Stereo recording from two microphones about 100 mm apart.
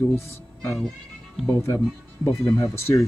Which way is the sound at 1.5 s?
30° left (ahead or behind).